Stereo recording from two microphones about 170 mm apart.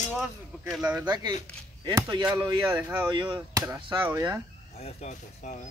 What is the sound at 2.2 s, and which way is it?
Speech, 10° right (ahead or behind).